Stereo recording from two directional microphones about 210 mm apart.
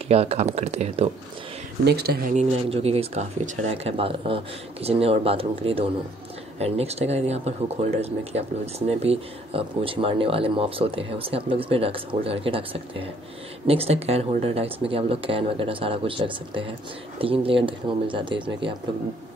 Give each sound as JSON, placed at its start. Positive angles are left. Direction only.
{"t": 0.1, "sound": "speech", "side_deg": -30}
{"t": 1.9, "sound": "speech", "side_deg": -50}
{"t": 2.3, "sound": "speech", "side_deg": -30}